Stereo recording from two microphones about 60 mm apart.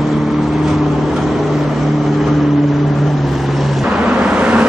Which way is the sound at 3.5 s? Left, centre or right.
Centre.